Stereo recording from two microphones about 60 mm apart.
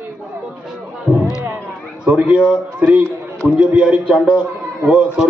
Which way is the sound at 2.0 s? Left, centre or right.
Centre.